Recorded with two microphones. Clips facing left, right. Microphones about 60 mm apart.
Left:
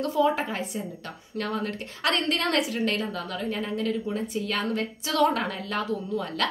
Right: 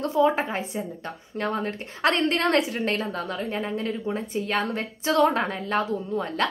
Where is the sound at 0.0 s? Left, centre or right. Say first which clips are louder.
Right 2 dB; right.